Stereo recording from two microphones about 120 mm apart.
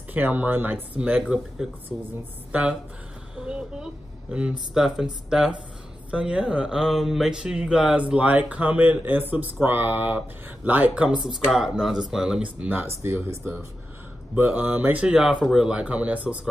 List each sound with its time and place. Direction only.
0.1 s speech: 15° right (ahead or behind)
3.3 s speech: 10° right (ahead or behind)